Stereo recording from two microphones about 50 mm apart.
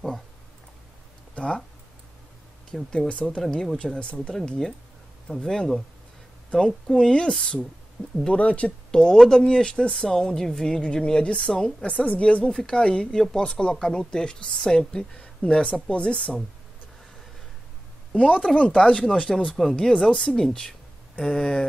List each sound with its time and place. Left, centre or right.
1.3 s a sound: left
2.7 s speech: centre
3.1 s speech: left
8.9 s speech: centre
18.1 s speech: left